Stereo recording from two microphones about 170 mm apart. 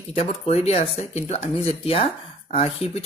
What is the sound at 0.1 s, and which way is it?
Speech, 35° left (ahead or behind).